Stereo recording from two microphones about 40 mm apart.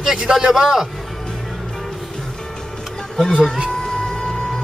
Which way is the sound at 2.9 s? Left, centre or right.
Centre.